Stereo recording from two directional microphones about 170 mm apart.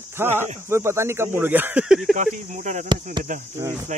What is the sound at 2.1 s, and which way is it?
Speech, 50° right (ahead or behind).